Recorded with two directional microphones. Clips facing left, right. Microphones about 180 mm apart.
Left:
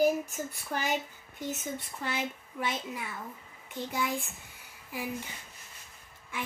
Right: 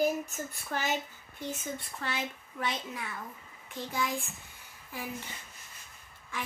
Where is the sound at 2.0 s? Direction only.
15° left (ahead or behind).